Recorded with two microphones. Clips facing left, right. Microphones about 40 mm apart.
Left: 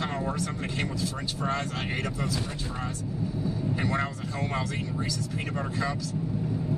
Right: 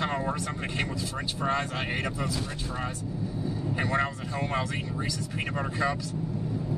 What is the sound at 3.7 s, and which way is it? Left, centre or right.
Speech, centre.